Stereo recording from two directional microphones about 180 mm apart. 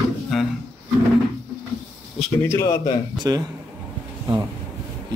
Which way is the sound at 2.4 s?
15° left (ahead or behind).